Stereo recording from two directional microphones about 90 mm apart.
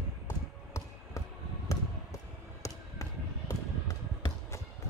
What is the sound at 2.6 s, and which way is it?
Basketball bounce, 35° left (ahead or behind).